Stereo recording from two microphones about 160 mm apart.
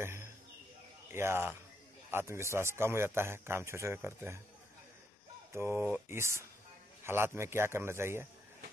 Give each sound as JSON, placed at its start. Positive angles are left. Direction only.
{"t": 0.0, "sound": "a sound", "side_deg": -15}
{"t": 1.1, "sound": "a man's voice", "side_deg": -15}
{"t": 5.5, "sound": "a man's voice", "side_deg": -15}